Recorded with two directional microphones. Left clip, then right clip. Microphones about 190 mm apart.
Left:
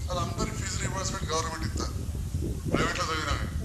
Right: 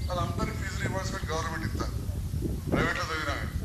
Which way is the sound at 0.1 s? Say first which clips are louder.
Even; 40° left (ahead or behind).